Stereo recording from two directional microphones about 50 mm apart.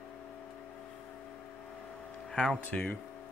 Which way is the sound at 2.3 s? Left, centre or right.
Centre.